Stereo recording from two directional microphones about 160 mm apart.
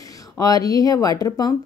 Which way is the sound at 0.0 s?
20° left (ahead or behind).